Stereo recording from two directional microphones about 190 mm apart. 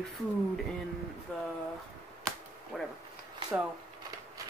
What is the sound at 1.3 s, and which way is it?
Speech, 5° left (ahead or behind).